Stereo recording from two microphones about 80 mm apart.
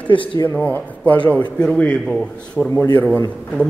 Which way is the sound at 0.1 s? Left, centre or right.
Left.